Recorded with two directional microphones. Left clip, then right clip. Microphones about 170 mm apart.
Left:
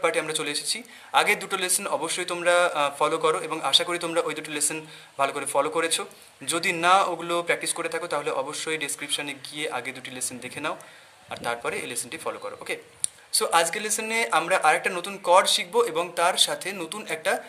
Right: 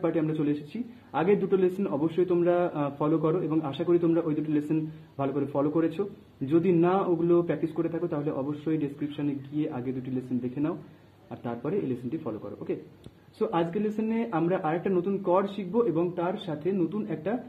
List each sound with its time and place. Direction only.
0.0 s speech: 20° left (ahead or behind)
11.4 s speech: 20° left (ahead or behind)